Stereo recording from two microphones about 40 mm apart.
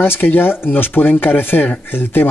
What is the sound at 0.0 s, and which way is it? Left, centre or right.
Speech, left.